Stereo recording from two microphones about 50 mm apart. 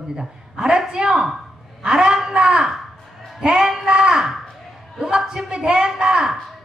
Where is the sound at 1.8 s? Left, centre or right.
Centre.